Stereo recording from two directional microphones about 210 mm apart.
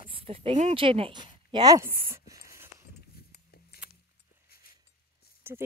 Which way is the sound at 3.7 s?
50° left (ahead or behind).